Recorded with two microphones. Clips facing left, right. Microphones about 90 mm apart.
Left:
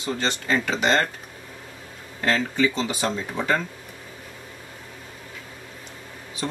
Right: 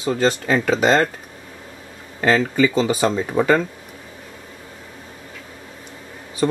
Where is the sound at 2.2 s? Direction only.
45° right (ahead or behind).